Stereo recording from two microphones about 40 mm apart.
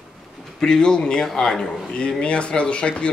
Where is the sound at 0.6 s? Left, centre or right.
Centre.